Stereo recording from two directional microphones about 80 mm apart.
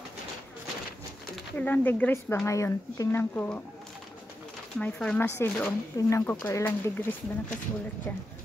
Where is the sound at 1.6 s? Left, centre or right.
Centre.